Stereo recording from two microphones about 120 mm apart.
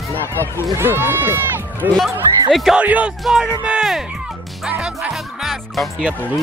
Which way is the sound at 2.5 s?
5° right (ahead or behind).